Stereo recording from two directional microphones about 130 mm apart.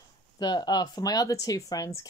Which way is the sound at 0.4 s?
35° left (ahead or behind).